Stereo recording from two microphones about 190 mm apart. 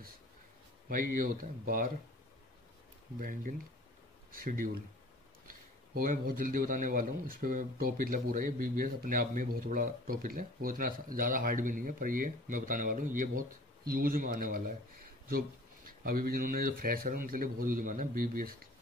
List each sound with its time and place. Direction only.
0.8 s speech: 50° right (ahead or behind)
3.2 s speech: 45° right (ahead or behind)
5.9 s speech: 50° right (ahead or behind)
15.9 s speech: 50° right (ahead or behind)